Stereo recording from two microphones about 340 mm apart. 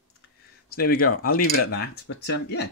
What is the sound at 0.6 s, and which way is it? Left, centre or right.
Speech, left.